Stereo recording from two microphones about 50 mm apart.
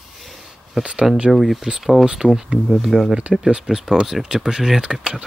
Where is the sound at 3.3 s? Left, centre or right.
Centre.